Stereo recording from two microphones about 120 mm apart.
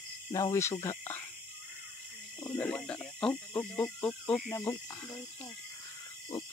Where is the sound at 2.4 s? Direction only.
15° left (ahead or behind).